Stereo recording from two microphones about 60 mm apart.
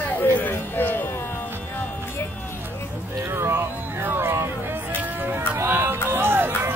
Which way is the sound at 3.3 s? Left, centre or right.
Right.